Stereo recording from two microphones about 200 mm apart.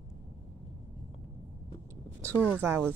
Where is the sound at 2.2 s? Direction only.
10° right (ahead or behind).